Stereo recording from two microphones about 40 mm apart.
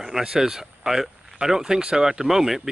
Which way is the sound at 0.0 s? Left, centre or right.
Centre.